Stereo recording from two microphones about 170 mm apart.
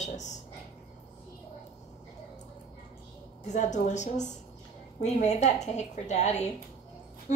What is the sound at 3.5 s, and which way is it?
A woman's voice, 45° left (ahead or behind).